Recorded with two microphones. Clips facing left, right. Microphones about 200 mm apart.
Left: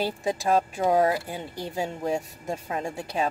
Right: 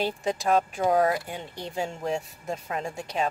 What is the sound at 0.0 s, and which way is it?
Speech, 10° left (ahead or behind).